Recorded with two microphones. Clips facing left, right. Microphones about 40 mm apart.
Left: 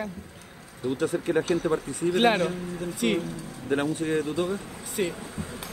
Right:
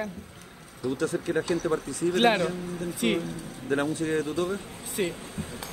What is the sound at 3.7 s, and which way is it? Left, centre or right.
Speech, left.